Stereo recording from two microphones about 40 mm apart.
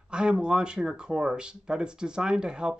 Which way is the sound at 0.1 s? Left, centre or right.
Right.